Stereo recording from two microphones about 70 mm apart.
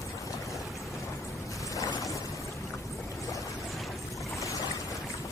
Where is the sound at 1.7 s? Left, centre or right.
Left.